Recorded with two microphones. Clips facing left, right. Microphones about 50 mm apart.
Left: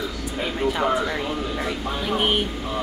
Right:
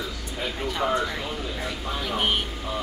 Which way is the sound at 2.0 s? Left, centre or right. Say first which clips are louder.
Left 3 dB; centre.